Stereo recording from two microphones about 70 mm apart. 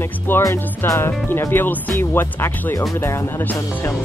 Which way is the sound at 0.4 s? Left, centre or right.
Left.